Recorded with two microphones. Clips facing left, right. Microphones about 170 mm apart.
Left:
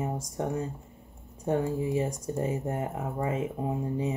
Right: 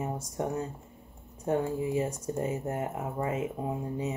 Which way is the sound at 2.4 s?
30° left (ahead or behind).